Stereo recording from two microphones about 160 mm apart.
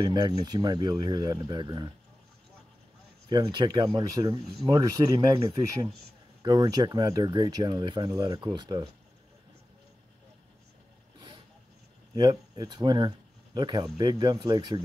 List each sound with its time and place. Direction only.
0.0 s speech: 25° right (ahead or behind)
3.3 s speech: 30° right (ahead or behind)
6.4 s speech: 25° right (ahead or behind)
11.1 s vehicle: 25° right (ahead or behind)
12.2 s speech: 25° right (ahead or behind)